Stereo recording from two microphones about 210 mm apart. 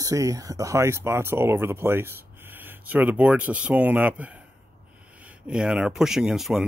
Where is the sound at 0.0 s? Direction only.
15° right (ahead or behind).